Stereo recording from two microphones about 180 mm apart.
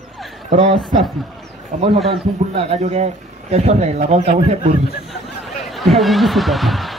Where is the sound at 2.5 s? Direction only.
35° right (ahead or behind).